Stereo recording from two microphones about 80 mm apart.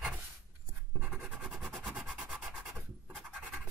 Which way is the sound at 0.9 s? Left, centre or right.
Centre.